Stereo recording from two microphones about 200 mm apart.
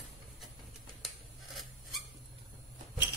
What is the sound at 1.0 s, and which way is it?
Scissors, centre (ahead or behind).